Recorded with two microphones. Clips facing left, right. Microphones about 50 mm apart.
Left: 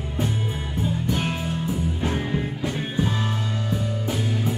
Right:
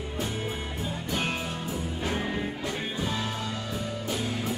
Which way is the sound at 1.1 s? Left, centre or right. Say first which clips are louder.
Left 1 dB; centre.